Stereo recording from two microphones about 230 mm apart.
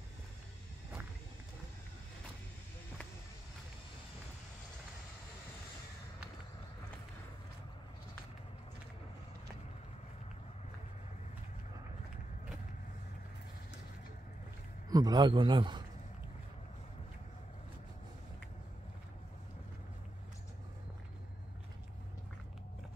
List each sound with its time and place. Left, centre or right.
14.9 s a man's voice: centre